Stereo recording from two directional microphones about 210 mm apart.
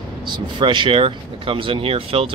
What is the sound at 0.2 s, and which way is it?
Speech, 20° right (ahead or behind).